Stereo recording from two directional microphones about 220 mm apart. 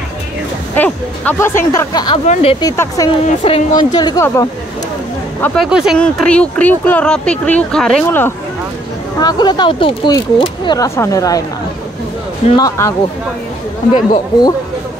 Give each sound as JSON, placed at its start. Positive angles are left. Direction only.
{"t": 0.7, "sound": "speech", "side_deg": 5}
{"t": 2.2, "sound": "speech", "side_deg": 30}
{"t": 2.6, "sound": "speech", "side_deg": 15}
{"t": 3.3, "sound": "speech", "side_deg": 25}
{"t": 5.4, "sound": "speech", "side_deg": 0}
{"t": 9.2, "sound": "speech", "side_deg": 20}
{"t": 12.4, "sound": "speech", "side_deg": 20}